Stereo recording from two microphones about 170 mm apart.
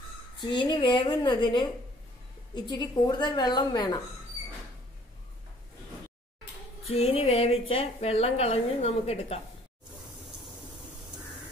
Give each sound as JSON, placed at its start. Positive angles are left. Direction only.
{"t": 0.4, "sound": "a woman's voice", "side_deg": 25}
{"t": 6.9, "sound": "a woman's voice", "side_deg": 35}